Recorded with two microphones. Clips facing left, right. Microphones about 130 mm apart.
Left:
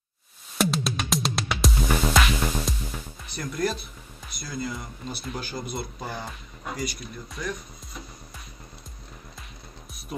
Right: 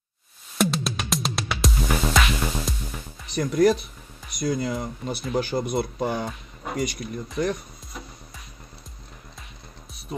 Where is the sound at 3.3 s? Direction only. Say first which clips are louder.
Right 9 dB; 65° right (ahead or behind).